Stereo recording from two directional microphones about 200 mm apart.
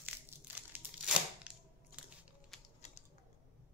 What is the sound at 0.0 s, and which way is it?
Tearing, 10° right (ahead or behind).